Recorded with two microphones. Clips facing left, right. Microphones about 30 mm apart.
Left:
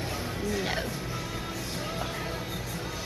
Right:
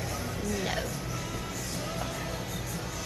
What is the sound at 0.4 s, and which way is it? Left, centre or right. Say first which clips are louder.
Music: left 2 dB; left.